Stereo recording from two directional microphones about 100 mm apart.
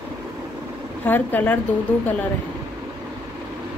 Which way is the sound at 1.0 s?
20° left (ahead or behind).